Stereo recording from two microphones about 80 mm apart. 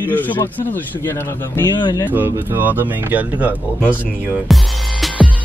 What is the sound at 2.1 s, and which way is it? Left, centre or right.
Speech, right.